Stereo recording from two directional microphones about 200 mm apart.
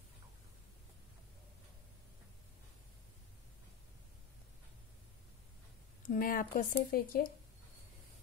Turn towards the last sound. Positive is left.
turn(degrees=50)  # may be behind; listen again after turning